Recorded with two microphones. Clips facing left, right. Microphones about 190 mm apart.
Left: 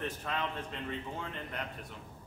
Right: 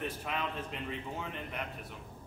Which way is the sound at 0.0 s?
10° right (ahead or behind).